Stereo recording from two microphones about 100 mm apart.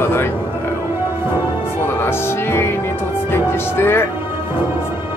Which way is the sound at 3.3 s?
25° left (ahead or behind).